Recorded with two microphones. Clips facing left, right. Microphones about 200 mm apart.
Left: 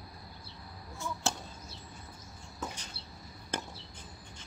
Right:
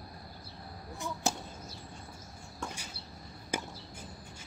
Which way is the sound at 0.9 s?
15° right (ahead or behind).